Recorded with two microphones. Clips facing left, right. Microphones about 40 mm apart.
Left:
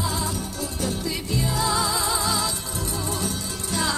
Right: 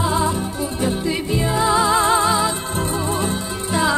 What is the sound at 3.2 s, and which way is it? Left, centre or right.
Music, right.